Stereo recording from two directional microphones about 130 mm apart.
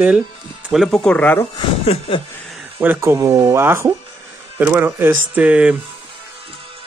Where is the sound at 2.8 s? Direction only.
15° right (ahead or behind).